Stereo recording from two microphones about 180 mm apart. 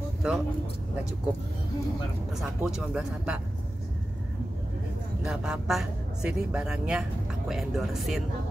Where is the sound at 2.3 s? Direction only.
Centre (ahead or behind).